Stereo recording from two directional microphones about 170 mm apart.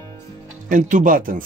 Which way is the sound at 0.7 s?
50° right (ahead or behind).